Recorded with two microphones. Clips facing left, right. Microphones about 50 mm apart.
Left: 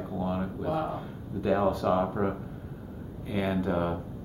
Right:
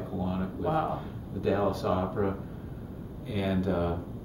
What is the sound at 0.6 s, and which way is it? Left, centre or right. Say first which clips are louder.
Speech: right 3 dB; centre.